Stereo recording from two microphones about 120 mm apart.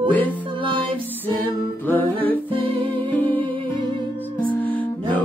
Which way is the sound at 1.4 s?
15° left (ahead or behind).